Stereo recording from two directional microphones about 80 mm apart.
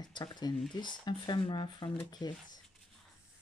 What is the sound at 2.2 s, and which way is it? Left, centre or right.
Speech, left.